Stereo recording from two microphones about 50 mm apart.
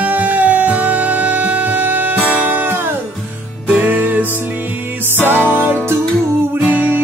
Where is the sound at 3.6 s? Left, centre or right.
Right.